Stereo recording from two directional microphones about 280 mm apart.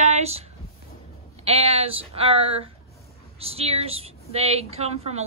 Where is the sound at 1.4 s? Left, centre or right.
Right.